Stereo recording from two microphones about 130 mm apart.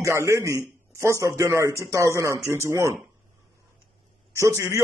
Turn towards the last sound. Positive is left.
turn(degrees=-25)  # may be behind; listen again after turning